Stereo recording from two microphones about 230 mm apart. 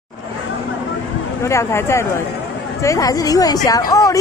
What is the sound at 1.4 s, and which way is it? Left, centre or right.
Speech, centre.